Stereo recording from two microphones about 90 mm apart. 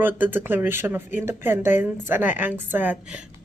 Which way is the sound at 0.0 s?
20° right (ahead or behind).